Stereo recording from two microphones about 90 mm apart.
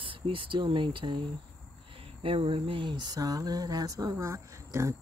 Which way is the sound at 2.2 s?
85° right.